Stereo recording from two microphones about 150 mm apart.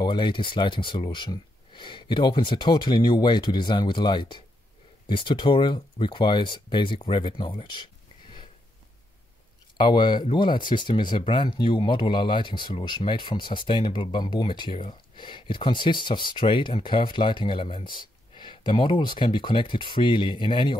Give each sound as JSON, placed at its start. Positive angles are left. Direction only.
{"t": 0.0, "sound": "speech", "side_deg": 30}
{"t": 9.8, "sound": "speech", "side_deg": 30}